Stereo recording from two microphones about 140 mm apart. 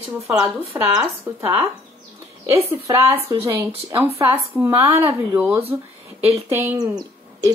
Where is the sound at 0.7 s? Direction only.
20° right (ahead or behind).